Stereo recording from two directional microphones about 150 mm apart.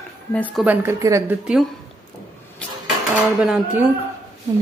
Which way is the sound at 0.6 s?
20° right (ahead or behind).